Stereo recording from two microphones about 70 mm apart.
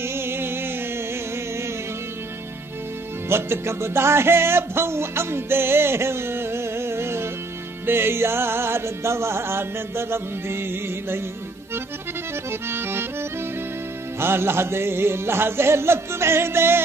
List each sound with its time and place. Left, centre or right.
0.0 s music: right
3.3 s music: right
12.4 s accordion: right
14.2 s music: right